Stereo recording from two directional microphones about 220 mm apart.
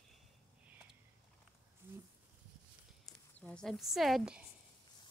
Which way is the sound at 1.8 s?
10° right (ahead or behind).